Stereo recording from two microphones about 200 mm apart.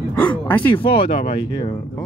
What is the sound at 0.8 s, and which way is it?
Speech, 25° left (ahead or behind).